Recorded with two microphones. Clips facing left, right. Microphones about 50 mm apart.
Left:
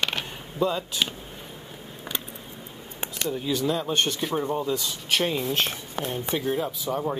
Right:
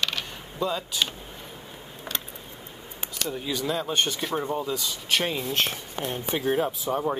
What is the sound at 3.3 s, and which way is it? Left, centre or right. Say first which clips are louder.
Speech: left 3 dB; centre.